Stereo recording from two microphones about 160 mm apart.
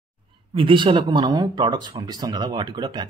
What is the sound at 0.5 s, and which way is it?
Speech, 30° right (ahead or behind).